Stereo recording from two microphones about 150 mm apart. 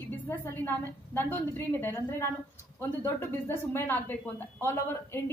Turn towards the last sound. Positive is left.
turn(degrees=15)  # may be behind; listen again after turning